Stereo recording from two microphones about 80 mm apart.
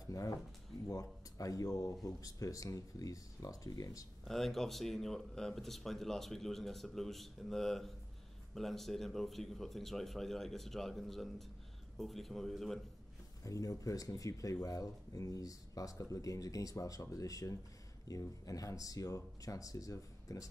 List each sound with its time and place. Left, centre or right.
0.1 s speech: left
4.2 s speech: centre
13.4 s speech: left